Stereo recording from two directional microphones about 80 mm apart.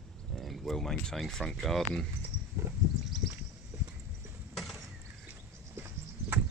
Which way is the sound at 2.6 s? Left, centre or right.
Right.